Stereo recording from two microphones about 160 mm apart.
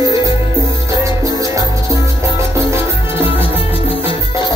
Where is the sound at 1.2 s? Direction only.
20° right (ahead or behind).